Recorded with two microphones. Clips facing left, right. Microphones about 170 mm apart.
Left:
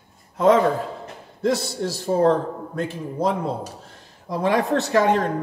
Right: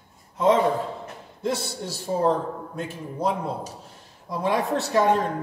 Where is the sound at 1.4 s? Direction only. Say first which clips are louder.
Left 5 dB; 85° left.